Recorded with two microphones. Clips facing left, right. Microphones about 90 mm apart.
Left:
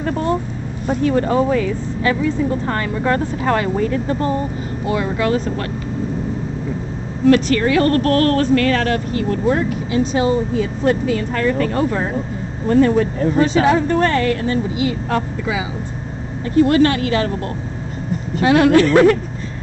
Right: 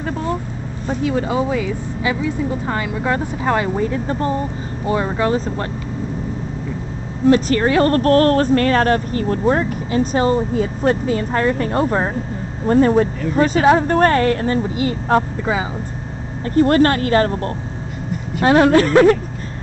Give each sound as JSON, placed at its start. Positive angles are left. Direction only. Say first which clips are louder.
{"t": 1.0, "sound": "speech", "louder": "left 3 dB", "side_deg": -10}
{"t": 4.8, "sound": "speech", "louder": "right 1 dB", "side_deg": -30}
{"t": 7.2, "sound": "a woman's voice", "louder": "left 1 dB", "side_deg": -30}
{"t": 16.4, "sound": "a woman's voice", "louder": "even", "side_deg": -45}